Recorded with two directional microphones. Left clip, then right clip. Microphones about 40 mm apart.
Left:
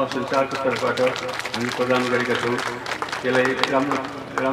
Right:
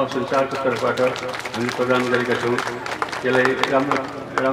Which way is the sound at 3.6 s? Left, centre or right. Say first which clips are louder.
Right 2 dB; left.